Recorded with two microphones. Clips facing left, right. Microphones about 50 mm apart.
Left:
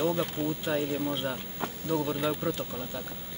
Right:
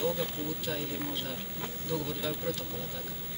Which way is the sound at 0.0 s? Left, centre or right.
Left.